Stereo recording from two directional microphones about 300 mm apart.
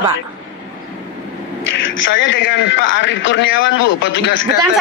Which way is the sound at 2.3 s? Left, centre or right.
Left.